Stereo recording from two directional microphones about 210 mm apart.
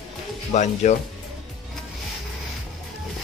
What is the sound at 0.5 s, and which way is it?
Speech, 35° left (ahead or behind).